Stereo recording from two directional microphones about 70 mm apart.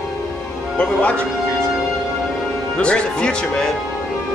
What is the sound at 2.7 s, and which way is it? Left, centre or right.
Speech, centre.